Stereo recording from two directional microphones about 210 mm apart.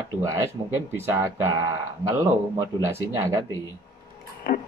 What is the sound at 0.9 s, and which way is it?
Speech, 10° right (ahead or behind).